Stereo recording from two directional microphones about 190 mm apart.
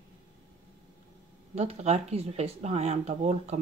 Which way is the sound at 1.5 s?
35° right (ahead or behind).